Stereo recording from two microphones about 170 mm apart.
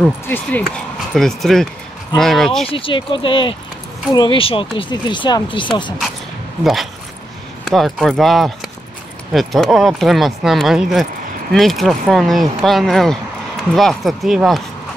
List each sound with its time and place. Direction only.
0.3 s speech: 10° left (ahead or behind)
2.7 s speech: 30° left (ahead or behind)
6.6 s speech: centre (ahead or behind)